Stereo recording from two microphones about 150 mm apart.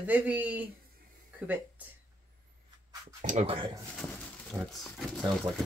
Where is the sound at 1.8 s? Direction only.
10° right (ahead or behind).